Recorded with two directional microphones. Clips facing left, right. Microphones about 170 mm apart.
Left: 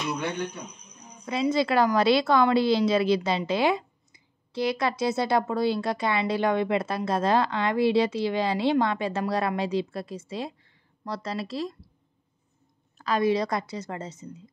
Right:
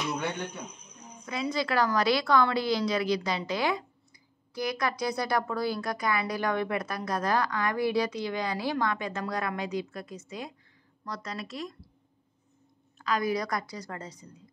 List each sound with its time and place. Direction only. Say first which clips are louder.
1.2 s a woman's voice: left 6 dB; 25° left (ahead or behind)
12.9 s a woman's voice: left 5 dB; 30° left (ahead or behind)